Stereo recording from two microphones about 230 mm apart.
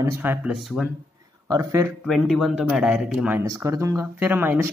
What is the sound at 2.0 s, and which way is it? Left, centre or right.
Speech, centre.